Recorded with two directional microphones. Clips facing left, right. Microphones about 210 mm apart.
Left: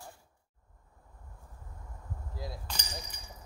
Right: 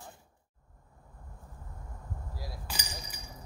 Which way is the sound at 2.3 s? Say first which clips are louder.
Left 5 dB; 20° left (ahead or behind).